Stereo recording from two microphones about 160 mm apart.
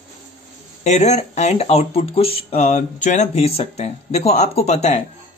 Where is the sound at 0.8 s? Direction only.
45° left (ahead or behind).